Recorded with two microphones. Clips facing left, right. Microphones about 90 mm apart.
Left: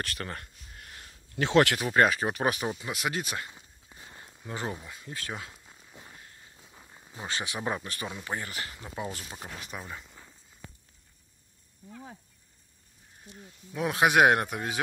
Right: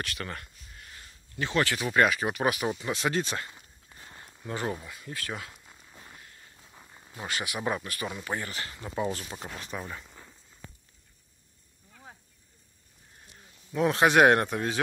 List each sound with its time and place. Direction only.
0.0 s speech: 40° left (ahead or behind)
0.7 s a sound: 55° left (ahead or behind)
1.3 s speech: 80° left
1.9 s speech: 35° left (ahead or behind)
2.7 s speech: 10° left (ahead or behind)
4.1 s a sound: centre (ahead or behind)
4.5 s speech: 15° left (ahead or behind)
5.5 s a sound: centre (ahead or behind)
7.2 s speech: 25° left (ahead or behind)
8.2 s speech: 15° left (ahead or behind)
9.8 s a sound: centre (ahead or behind)
13.7 s speech: 10° left (ahead or behind)